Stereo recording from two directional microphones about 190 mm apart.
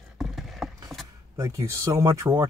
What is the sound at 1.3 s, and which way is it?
Speech, 15° right (ahead or behind).